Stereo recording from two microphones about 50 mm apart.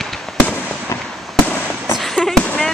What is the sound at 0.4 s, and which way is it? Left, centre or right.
Fireworks, left.